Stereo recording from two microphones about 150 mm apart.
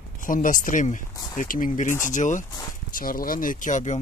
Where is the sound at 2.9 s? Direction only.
70° left (ahead or behind); by 3.9 s 55° left (ahead or behind).